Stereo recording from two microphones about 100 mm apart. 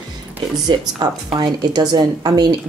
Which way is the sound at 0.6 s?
40° right (ahead or behind).